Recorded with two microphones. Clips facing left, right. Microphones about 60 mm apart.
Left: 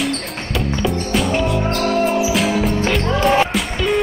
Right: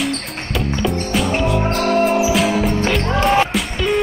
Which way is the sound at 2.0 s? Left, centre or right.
Right.